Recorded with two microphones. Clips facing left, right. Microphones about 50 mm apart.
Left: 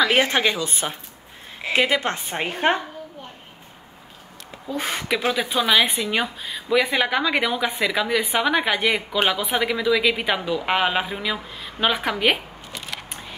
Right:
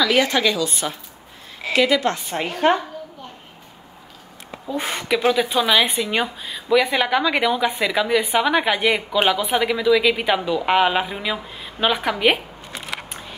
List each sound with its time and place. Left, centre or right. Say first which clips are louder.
0.0 s a woman's voice: right 1 dB; left
4.6 s speech: right 2 dB; centre